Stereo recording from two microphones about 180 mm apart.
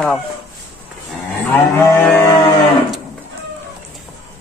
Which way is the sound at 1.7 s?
15° left (ahead or behind).